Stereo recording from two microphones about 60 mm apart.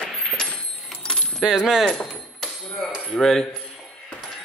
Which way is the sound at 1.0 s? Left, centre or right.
Centre.